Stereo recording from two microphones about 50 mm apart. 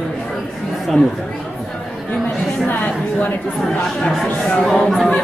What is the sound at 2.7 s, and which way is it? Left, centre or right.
Speech, left.